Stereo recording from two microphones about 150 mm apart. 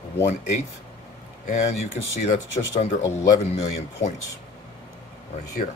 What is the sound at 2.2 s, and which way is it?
Speech, 45° left (ahead or behind).